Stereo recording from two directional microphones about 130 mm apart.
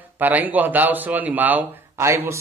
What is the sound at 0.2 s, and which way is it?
Speech, 15° right (ahead or behind).